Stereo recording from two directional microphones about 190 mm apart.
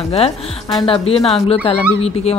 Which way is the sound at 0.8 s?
30° left (ahead or behind).